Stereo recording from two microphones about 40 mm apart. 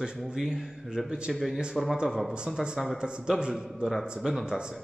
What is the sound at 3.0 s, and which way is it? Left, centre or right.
Speech, right.